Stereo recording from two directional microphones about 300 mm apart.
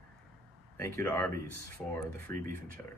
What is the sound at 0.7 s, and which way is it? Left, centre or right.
Speech, centre.